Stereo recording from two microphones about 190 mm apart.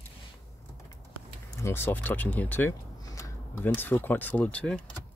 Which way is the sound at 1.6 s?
15° left (ahead or behind).